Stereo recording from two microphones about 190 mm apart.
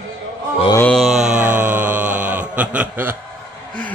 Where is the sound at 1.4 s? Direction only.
10° right (ahead or behind).